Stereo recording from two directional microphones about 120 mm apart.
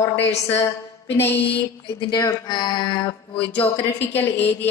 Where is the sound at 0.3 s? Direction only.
65° left (ahead or behind).